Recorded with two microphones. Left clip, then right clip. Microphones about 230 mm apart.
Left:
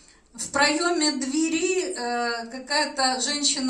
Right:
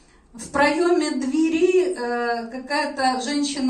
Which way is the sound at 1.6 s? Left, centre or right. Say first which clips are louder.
Right 6 dB; left.